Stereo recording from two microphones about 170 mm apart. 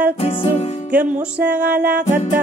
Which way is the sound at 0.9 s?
10° right (ahead or behind).